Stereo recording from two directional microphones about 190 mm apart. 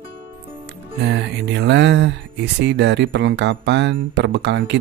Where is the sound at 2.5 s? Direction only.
65° right (ahead or behind).